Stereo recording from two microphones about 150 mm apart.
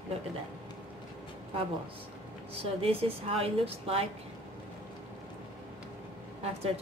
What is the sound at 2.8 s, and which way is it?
A woman's voice, 40° right (ahead or behind).